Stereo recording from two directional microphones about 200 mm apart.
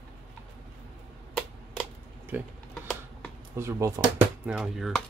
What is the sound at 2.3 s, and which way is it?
Speech, 10° right (ahead or behind).